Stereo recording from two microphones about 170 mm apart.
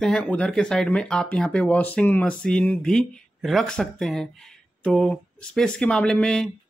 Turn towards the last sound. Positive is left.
turn(degrees=5)  # may be behind; listen again after turning